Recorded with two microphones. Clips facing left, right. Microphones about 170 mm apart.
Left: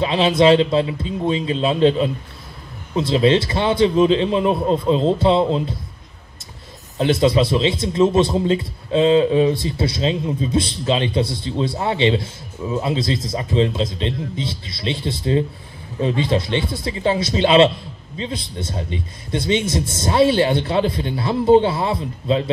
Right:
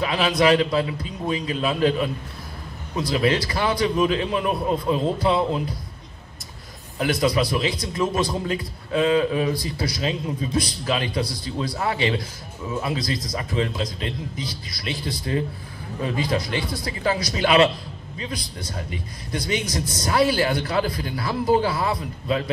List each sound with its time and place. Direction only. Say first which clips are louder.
0.0 s a man's voice: left 5 dB; 25° left (ahead or behind)
7.0 s a man's voice: left 5 dB; 25° left (ahead or behind)